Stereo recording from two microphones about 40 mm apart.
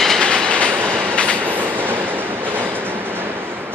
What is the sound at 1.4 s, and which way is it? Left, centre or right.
Train, right.